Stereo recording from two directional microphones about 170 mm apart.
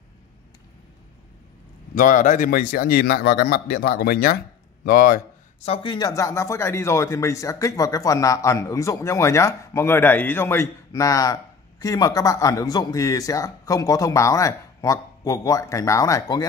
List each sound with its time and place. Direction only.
2.0 s a man's voice: 50° left (ahead or behind)
5.6 s speech: 30° left (ahead or behind)